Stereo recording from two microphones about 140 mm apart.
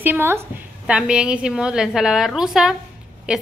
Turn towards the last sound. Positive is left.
turn(degrees=-5)  # may be behind; listen again after turning